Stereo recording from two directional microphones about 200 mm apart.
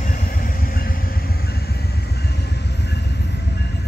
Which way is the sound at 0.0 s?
40° left (ahead or behind).